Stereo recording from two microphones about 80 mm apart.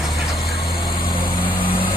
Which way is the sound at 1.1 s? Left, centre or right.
Left.